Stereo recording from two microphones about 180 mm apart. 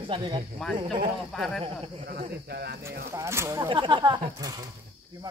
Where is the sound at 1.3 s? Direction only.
Centre (ahead or behind).